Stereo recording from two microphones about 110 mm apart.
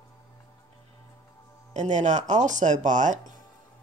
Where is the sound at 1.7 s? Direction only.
90° right.